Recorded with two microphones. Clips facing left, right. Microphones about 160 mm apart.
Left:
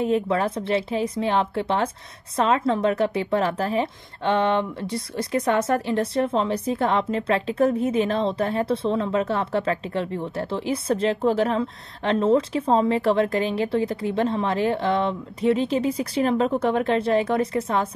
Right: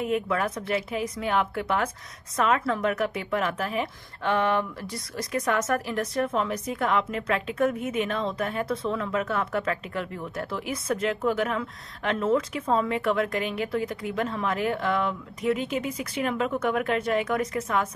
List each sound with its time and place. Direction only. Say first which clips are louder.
0.0 s a woman's voice: left 4 dB; 30° left (ahead or behind)